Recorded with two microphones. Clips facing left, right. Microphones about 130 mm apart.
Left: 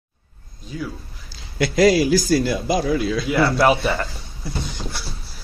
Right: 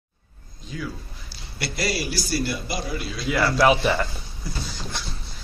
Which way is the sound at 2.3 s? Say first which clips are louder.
Left 5 dB; 90° left.